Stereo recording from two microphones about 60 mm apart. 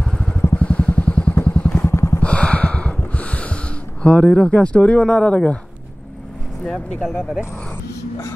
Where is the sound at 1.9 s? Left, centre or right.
Left.